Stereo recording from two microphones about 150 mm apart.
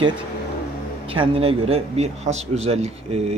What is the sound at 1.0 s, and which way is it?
Speech, 40° right (ahead or behind).